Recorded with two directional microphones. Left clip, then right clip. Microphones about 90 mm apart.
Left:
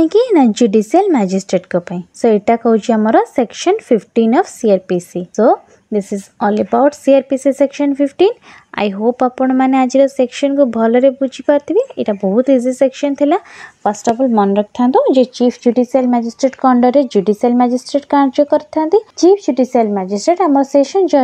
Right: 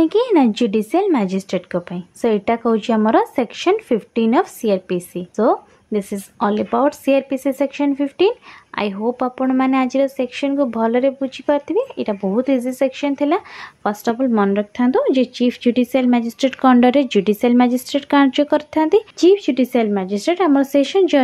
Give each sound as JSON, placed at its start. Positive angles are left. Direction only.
{"t": 0.0, "sound": "a woman's voice", "side_deg": 50}
{"t": 10.5, "sound": "speech", "side_deg": 35}
{"t": 12.2, "sound": "speech", "side_deg": 25}
{"t": 12.4, "sound": "speech", "side_deg": 40}
{"t": 13.8, "sound": "speech", "side_deg": 20}
{"t": 14.5, "sound": "speech", "side_deg": 40}
{"t": 15.4, "sound": "speech", "side_deg": -30}
{"t": 16.2, "sound": "speech", "side_deg": -45}
{"t": 16.6, "sound": "speech", "side_deg": 0}
{"t": 18.7, "sound": "speech", "side_deg": -50}
{"t": 19.3, "sound": "speech", "side_deg": 5}